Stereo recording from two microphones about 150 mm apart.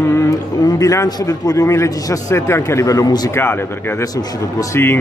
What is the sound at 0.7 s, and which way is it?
A man's voice, 20° left (ahead or behind).